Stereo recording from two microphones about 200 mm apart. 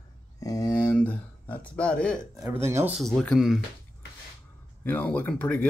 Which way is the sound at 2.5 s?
10° right (ahead or behind).